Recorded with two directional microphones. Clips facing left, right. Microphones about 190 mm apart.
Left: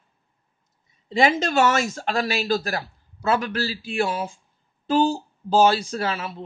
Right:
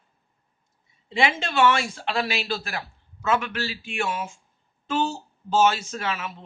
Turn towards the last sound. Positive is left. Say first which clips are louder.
# left 3 dB
turn(degrees=35)  # may be behind; listen again after turning